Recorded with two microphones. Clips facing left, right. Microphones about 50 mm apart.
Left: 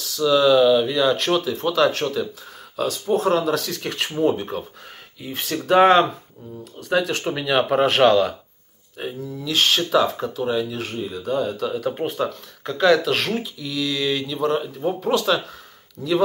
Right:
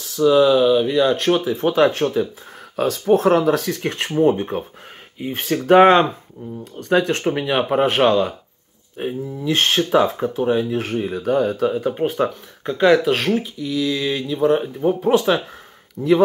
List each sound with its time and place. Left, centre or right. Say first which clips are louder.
0.0 s a sound: right 3 dB; right
0.4 s speech: left 1 dB; centre
1.3 s speech: right 3 dB; right
2.7 s speech: right 5 dB; right
12.3 s speech: right 3 dB; centre
13.1 s speech: right 4 dB; centre
15.0 s speech: right 3 dB; right